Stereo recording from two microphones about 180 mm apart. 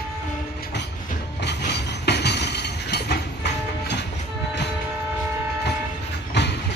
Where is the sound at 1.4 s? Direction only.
70° left (ahead or behind).